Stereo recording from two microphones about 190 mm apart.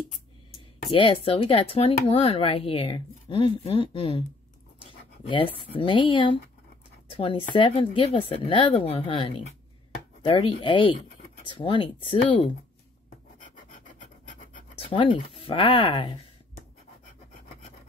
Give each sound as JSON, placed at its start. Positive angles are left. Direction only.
{"t": 0.8, "sound": "speech", "side_deg": 25}
{"t": 5.3, "sound": "speech", "side_deg": 25}
{"t": 14.8, "sound": "speech", "side_deg": 25}